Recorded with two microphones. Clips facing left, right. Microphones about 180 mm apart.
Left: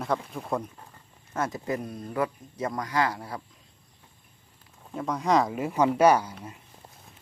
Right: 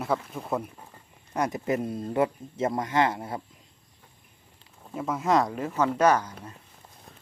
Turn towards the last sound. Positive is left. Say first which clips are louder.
# left 2 dB
turn(degrees=10)  # may be behind; listen again after turning